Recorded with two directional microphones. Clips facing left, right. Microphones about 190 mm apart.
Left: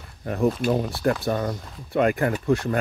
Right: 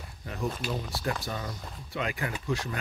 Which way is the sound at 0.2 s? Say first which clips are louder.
Left 11 dB; 55° left (ahead or behind).